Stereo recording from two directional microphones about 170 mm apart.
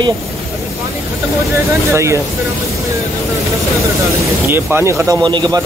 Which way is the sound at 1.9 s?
15° right (ahead or behind).